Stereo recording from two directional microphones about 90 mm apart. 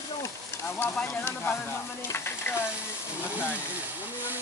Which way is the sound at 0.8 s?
25° left (ahead or behind).